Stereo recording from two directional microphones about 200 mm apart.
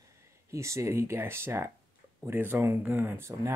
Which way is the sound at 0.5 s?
15° right (ahead or behind).